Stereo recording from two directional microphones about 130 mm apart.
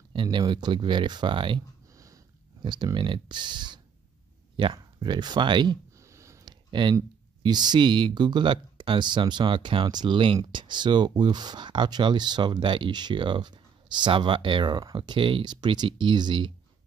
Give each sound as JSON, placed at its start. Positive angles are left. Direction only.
{"t": 0.1, "sound": "speech", "side_deg": -35}
{"t": 2.6, "sound": "speech", "side_deg": -35}
{"t": 5.9, "sound": "a sound", "side_deg": -20}
{"t": 6.7, "sound": "speech", "side_deg": -35}